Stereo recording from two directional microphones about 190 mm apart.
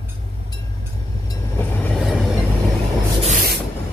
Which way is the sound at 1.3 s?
10° left (ahead or behind).